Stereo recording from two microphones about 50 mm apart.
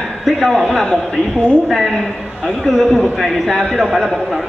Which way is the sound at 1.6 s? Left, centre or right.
Centre.